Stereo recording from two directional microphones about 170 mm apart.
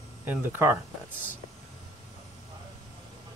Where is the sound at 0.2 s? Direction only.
10° right (ahead or behind).